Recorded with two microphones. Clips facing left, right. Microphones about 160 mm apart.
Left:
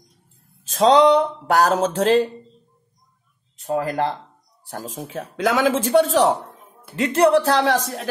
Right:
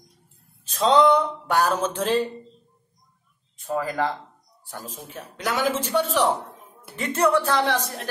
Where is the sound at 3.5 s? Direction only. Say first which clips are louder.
Left 4 dB; 85° left.